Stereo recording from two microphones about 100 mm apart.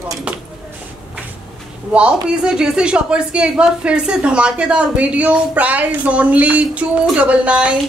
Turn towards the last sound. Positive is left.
turn(degrees=-10)  # may be behind; listen again after turning